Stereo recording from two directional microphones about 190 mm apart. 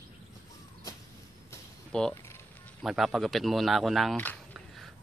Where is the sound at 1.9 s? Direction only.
5° left (ahead or behind).